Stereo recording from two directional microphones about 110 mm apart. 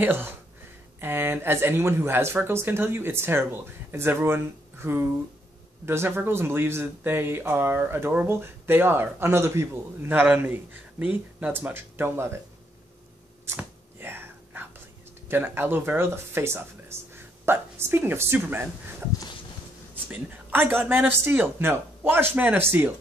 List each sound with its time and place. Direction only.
0.0 s speech: 20° right (ahead or behind)
13.6 s whispering: 20° right (ahead or behind)
15.2 s speech: 20° right (ahead or behind)
20.1 s speech: 15° right (ahead or behind)